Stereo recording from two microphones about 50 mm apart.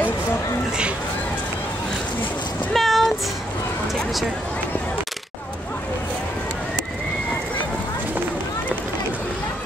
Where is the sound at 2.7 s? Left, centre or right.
Centre.